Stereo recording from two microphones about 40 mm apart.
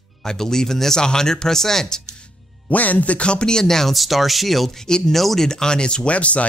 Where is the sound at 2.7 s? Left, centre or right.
Left; by 5.4 s centre.